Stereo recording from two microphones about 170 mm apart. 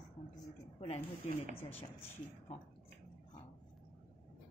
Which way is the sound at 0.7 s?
35° left (ahead or behind).